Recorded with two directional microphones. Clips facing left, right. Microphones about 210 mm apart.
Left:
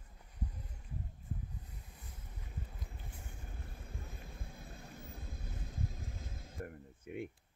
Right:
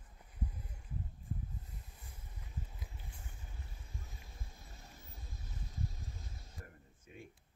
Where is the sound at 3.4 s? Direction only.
55° left (ahead or behind).